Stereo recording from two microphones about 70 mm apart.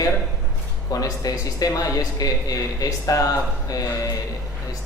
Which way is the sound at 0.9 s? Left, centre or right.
Left.